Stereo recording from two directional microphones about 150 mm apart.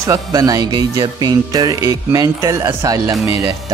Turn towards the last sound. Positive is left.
turn(degrees=-25)  # may be behind; listen again after turning